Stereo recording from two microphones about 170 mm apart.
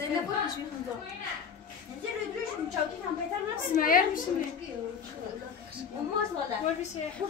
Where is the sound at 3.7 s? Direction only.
55° left (ahead or behind).